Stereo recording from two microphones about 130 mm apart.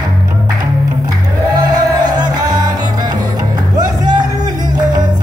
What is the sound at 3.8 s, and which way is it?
Music, 35° right (ahead or behind).